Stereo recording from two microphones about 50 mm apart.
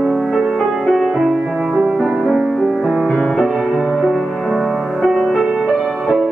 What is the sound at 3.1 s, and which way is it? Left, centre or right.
Music, centre.